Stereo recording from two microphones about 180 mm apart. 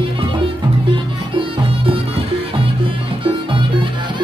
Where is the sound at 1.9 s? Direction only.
30° right (ahead or behind).